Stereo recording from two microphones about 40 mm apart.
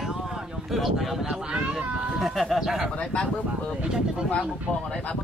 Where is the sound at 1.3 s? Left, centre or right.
Right.